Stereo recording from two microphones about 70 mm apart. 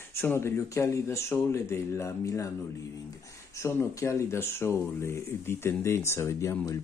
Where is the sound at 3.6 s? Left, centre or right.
Left.